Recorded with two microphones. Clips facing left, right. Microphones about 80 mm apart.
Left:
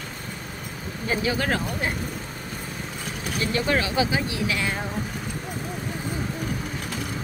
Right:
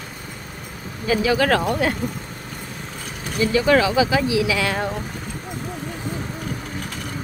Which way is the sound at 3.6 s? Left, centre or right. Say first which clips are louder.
Right 7 dB; right.